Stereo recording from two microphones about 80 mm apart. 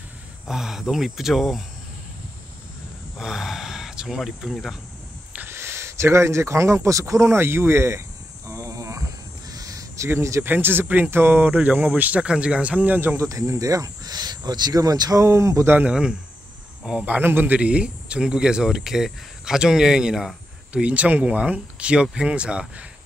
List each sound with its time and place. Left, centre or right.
0.5 s speech: centre
3.2 s speech: centre
5.5 s speech: right
8.5 s cricket: right
9.5 s crow: right
10.0 s speech: right
10.4 s speech: right
13.2 s speech: right
15.9 s speech: centre
17.0 s speech: right